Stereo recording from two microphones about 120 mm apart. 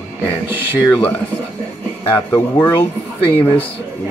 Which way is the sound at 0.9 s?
10° left (ahead or behind).